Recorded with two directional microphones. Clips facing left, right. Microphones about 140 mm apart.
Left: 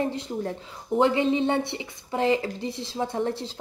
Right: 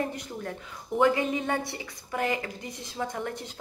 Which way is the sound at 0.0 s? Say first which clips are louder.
Left 5 dB; 25° left (ahead or behind).